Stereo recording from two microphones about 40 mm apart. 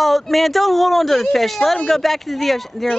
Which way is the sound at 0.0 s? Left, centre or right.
Centre.